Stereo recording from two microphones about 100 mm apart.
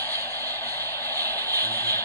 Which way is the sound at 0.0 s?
20° left (ahead or behind).